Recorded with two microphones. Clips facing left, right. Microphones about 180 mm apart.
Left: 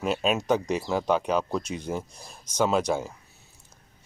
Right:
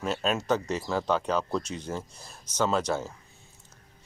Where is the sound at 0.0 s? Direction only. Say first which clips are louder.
Left 3 dB; 15° left (ahead or behind).